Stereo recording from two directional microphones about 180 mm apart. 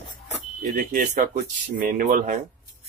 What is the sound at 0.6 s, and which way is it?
Speech, 50° right (ahead or behind).